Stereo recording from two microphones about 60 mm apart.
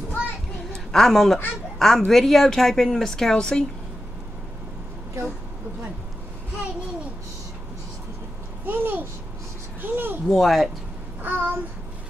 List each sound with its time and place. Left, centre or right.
0.9 s a woman's voice: centre
8.6 s a child's voice: right
9.8 s a sound: right
10.2 s a woman's voice: centre
11.2 s a child's voice: right